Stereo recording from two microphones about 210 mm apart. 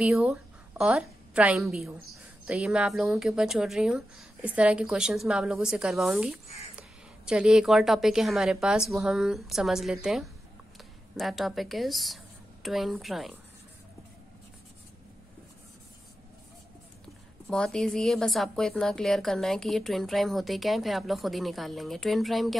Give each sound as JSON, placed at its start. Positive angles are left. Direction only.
{"t": 0.0, "sound": "a woman's voice", "side_deg": -5}
{"t": 6.4, "sound": "speech", "side_deg": 30}
{"t": 6.7, "sound": "a woman's voice", "side_deg": -5}
{"t": 17.5, "sound": "a woman's voice", "side_deg": 5}